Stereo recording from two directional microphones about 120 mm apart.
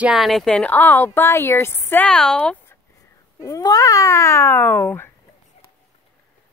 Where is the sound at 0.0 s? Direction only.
Centre (ahead or behind).